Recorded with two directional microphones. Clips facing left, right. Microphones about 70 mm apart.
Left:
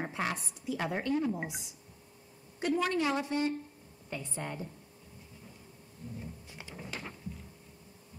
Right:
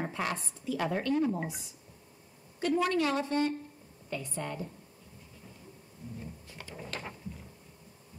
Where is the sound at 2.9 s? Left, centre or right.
Centre.